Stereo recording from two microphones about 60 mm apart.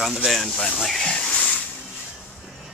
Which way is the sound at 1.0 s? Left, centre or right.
Centre.